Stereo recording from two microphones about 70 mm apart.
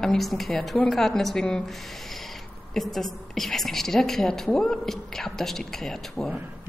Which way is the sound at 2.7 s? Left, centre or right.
Centre.